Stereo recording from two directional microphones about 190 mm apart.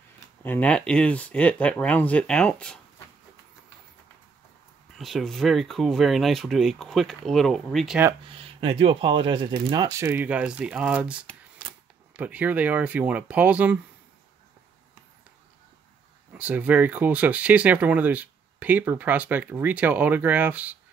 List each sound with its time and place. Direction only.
0.4 s speech: 10° left (ahead or behind)
4.9 s speech: centre (ahead or behind)
8.4 s speech: 30° right (ahead or behind); by 13.7 s 10° right (ahead or behind)
16.3 s speech: 10° right (ahead or behind)